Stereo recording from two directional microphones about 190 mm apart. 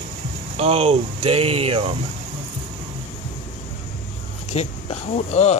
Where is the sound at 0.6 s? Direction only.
30° right (ahead or behind).